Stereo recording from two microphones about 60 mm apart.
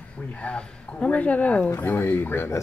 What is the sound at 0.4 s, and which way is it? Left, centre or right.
Speech, centre.